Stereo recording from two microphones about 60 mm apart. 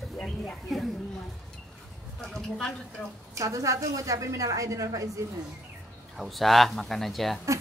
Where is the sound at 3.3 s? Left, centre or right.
Right.